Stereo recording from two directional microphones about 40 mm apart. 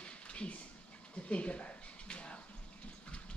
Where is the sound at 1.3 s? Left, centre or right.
Left.